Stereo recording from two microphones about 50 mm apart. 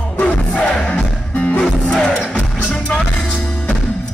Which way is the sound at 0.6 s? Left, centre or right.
Left.